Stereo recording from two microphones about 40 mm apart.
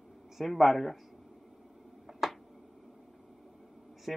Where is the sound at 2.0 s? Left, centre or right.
Centre.